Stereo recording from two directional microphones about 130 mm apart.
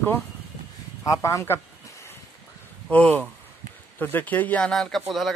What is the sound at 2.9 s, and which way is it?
Speech, 10° left (ahead or behind).